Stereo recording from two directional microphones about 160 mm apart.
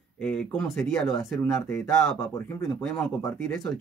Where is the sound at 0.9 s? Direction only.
10° left (ahead or behind).